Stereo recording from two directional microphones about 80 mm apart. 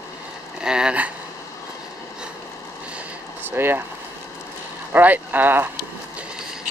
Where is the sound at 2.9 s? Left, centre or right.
Right.